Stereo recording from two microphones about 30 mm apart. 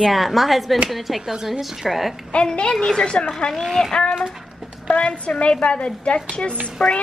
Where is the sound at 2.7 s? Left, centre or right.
Left.